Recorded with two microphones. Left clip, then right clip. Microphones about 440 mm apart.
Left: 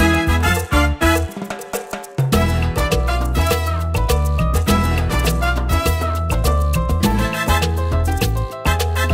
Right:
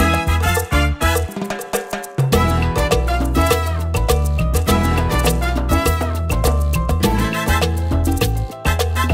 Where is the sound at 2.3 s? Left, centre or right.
Right.